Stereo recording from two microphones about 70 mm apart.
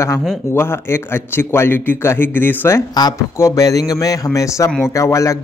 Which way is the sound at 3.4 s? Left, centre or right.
Left.